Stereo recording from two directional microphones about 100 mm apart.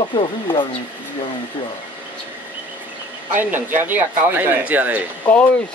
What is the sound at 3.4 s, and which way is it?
Speech, 20° right (ahead or behind).